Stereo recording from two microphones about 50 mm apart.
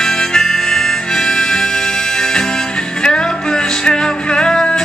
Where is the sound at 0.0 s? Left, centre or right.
Centre.